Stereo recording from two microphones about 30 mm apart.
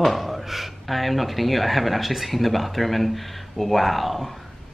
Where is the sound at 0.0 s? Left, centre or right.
Centre.